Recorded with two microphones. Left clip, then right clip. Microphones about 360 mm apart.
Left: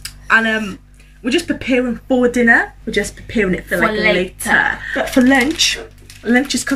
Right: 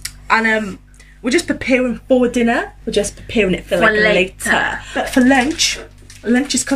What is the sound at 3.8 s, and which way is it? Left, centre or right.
Speech, centre.